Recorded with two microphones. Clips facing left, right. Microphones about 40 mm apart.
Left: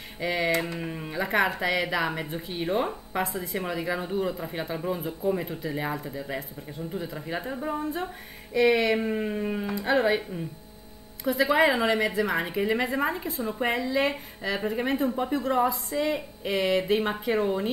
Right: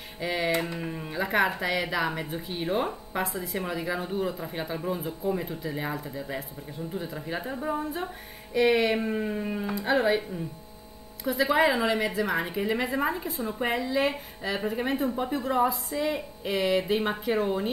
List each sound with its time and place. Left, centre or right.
0.2 s a woman's voice: centre
9.0 s a sound: centre
9.8 s a woman's voice: centre